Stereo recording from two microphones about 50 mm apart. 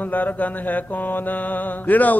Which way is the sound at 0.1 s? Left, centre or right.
Left.